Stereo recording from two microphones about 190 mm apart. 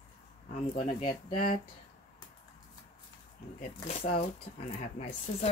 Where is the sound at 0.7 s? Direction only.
45° left (ahead or behind).